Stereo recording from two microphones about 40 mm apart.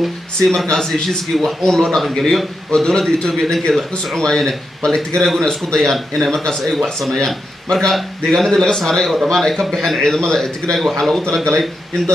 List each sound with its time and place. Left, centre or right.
0.4 s a man's voice: centre
2.7 s a man's voice: centre
5.9 s speech: centre
6.4 s a man's voice: centre